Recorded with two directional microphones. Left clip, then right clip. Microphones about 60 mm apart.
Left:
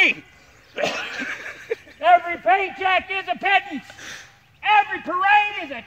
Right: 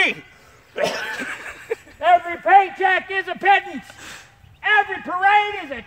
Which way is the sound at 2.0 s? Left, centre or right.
Right.